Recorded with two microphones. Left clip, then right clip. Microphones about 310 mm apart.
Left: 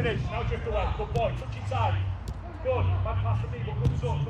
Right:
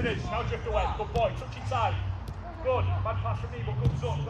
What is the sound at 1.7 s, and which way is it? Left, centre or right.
Speech, centre.